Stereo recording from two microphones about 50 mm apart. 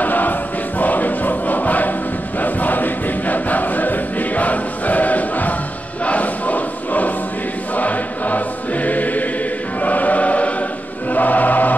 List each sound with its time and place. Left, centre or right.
0.0 s choir: left